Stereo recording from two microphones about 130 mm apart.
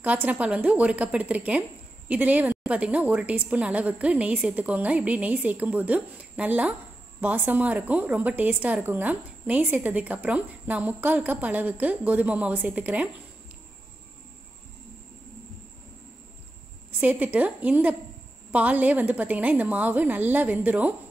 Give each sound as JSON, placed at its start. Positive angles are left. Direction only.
{"t": 0.0, "sound": "a woman's voice", "side_deg": -10}
{"t": 17.0, "sound": "a woman's voice", "side_deg": -10}